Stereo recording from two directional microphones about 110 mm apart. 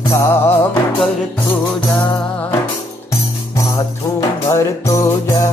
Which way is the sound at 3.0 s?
30° left (ahead or behind).